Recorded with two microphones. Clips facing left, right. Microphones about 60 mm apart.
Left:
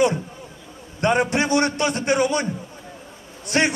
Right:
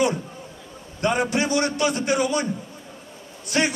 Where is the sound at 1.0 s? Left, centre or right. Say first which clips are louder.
Left 2 dB; left.